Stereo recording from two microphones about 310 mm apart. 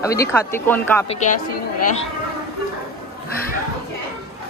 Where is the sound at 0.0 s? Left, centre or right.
Centre.